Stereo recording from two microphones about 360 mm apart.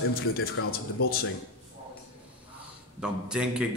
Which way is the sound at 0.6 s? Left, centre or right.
Left.